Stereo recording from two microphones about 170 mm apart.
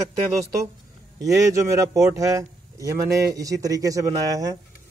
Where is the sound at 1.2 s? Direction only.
20° right (ahead or behind).